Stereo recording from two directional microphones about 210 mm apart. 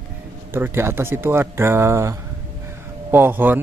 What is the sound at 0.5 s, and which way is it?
Speech, 10° right (ahead or behind).